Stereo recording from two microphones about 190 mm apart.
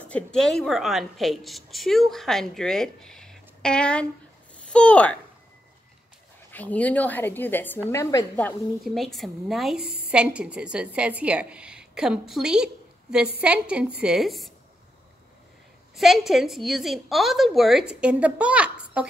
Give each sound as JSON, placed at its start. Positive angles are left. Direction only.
{"t": 0.0, "sound": "a woman's voice", "side_deg": 5}
{"t": 6.5, "sound": "speech", "side_deg": 10}
{"t": 8.8, "sound": "a woman's voice", "side_deg": 0}
{"t": 16.0, "sound": "a woman's voice", "side_deg": 0}